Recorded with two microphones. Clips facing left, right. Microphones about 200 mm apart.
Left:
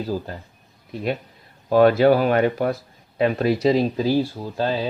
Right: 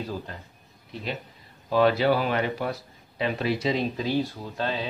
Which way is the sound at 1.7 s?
50° left (ahead or behind).